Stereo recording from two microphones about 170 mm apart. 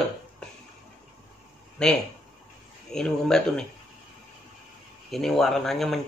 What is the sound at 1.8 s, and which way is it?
Speech, 5° left (ahead or behind).